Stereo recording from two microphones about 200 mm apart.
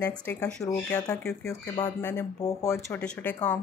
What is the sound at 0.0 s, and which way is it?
Speech, 10° left (ahead or behind).